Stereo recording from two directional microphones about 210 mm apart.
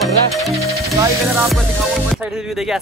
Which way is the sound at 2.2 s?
5° right (ahead or behind).